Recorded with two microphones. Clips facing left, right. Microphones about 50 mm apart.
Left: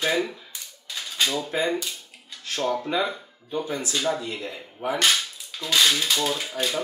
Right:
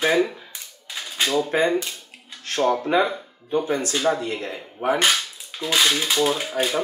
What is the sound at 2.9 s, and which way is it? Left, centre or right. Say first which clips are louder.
Cutlery: right 5 dB; right.